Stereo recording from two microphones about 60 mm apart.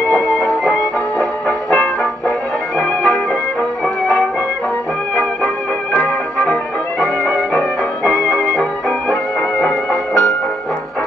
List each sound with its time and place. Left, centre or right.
2.8 s music: left
5.9 s music: left
9.6 s music: left